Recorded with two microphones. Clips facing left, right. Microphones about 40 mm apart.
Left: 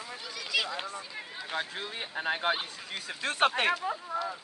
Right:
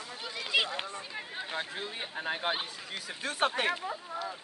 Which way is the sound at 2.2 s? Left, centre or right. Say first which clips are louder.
Left 4 dB; left.